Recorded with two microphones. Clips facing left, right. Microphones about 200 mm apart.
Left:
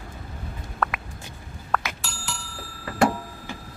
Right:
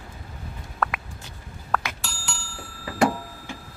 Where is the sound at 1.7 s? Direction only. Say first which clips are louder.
Even; centre (ahead or behind).